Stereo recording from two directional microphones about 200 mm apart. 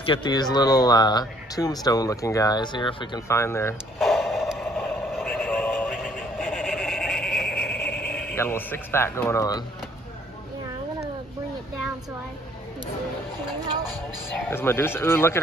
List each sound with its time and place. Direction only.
0.0 s speech: 25° left (ahead or behind)
4.0 s radio: centre (ahead or behind)
5.9 s radio: 5° right (ahead or behind)
7.4 s a sound: 55° left (ahead or behind)
8.3 s speech: 10° left (ahead or behind)
14.5 s speech: 10° left (ahead or behind)